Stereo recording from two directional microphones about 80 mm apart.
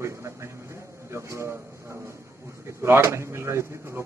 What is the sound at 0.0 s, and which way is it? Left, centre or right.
A man's voice, right.